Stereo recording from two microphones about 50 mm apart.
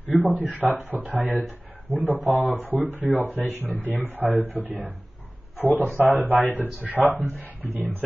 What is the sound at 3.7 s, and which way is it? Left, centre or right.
Speech, left.